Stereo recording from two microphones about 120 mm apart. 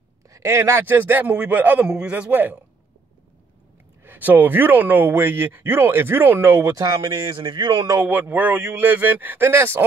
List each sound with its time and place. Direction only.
0.3 s speech: 20° right (ahead or behind)
4.0 s speech: 15° right (ahead or behind)
6.7 s speech: 35° right (ahead or behind)
8.0 s speech: 15° right (ahead or behind)